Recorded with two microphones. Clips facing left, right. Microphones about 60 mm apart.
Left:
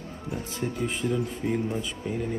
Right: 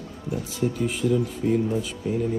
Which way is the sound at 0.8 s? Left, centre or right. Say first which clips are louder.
Right 3 dB; left.